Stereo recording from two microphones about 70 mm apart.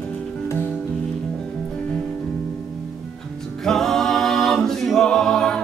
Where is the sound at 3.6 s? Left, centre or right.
Centre.